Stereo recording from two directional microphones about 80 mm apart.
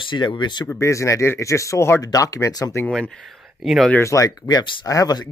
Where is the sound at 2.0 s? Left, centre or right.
Left.